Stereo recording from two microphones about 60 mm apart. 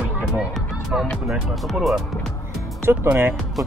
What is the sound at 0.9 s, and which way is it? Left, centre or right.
Speech, centre.